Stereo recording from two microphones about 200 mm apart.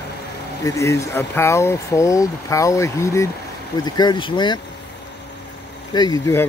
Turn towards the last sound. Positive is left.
turn(degrees=15)  # may be behind; listen again after turning